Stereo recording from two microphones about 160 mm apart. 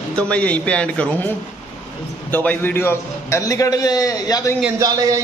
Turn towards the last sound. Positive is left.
turn(degrees=-20)  # may be behind; listen again after turning